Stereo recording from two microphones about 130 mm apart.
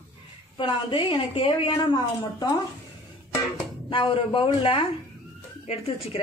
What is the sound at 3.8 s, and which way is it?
Speech, 40° left (ahead or behind).